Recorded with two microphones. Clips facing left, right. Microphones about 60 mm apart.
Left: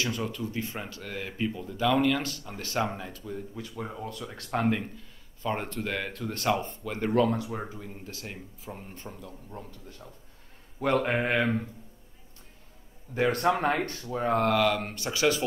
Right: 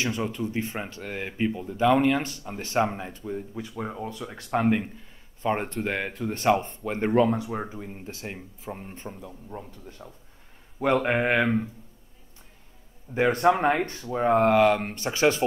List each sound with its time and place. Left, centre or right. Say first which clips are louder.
0.0 s speech: right 3 dB; right
5.4 s speech: right 4 dB; right
13.1 s speech: right 4 dB; right